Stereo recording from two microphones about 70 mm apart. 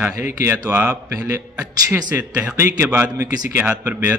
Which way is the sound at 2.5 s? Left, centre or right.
Right.